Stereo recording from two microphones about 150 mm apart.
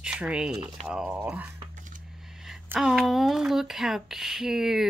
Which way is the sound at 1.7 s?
60° right (ahead or behind).